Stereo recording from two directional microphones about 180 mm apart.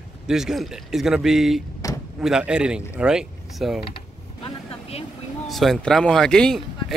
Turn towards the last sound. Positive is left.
turn(degrees=5)  # may be behind; listen again after turning